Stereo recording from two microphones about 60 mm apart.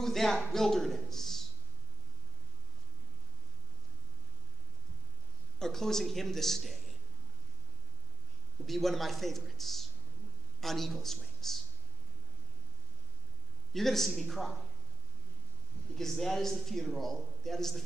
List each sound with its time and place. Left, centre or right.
0.0 s a sound: centre
0.5 s a man's voice: centre
5.6 s a man's voice: centre
8.6 s a man's voice: centre
13.7 s a man's voice: centre
16.0 s a man's voice: centre